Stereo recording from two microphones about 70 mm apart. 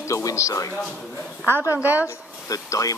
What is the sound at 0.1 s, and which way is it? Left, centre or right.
Speech, left.